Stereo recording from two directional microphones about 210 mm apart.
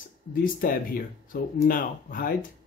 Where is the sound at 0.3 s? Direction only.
40° left (ahead or behind).